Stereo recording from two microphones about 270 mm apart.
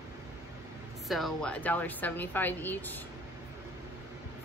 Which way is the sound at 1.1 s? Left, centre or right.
Centre.